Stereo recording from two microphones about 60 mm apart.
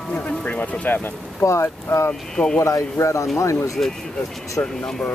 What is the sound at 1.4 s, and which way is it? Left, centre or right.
Speech, left.